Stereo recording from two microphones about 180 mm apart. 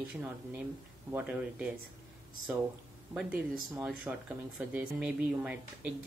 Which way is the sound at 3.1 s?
5° right (ahead or behind).